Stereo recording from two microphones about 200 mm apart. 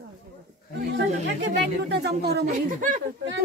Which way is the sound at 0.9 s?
60° right (ahead or behind).